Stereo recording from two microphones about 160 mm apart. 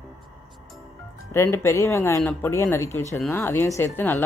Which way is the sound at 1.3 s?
15° left (ahead or behind).